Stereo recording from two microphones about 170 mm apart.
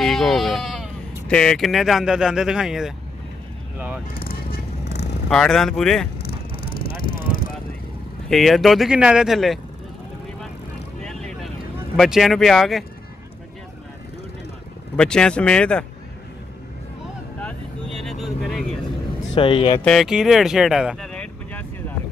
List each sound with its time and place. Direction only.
0.0 s speech: centre (ahead or behind)
4.1 s vehicle: 60° left (ahead or behind)
5.3 s speech: 5° left (ahead or behind)
6.2 s vehicle: 60° left (ahead or behind)
8.3 s speech: centre (ahead or behind)
11.0 s vehicle: 5° left (ahead or behind)
12.0 s speech: centre (ahead or behind)
15.0 s speech: 5° left (ahead or behind)
17.9 s vehicle: centre (ahead or behind)
19.3 s speech: 30° left (ahead or behind)
19.8 s speech: centre (ahead or behind)